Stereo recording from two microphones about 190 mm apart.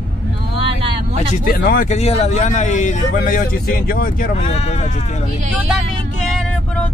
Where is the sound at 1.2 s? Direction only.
50° left (ahead or behind).